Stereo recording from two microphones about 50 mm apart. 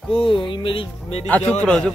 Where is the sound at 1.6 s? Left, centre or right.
Centre.